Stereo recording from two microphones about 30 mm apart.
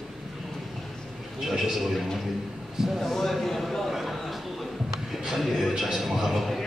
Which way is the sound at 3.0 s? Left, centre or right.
Centre.